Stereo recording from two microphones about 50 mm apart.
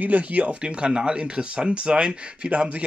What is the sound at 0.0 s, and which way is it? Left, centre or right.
Speech, right.